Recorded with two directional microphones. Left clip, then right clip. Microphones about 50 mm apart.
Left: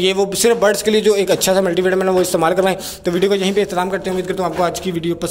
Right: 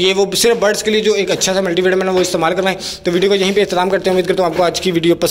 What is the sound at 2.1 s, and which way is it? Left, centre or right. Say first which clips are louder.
Speech: right 1 dB; left.